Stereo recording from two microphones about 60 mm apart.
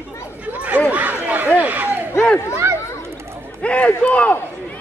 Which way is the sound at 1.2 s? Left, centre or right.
Right.